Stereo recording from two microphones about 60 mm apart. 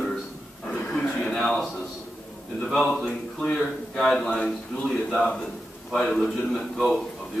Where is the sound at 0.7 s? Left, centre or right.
Left.